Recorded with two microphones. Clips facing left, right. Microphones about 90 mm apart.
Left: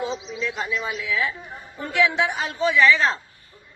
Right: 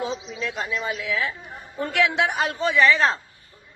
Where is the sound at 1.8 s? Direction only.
65° right (ahead or behind); by 3.1 s 50° right (ahead or behind).